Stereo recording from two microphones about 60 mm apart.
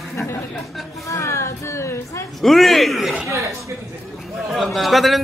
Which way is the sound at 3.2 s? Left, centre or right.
Right.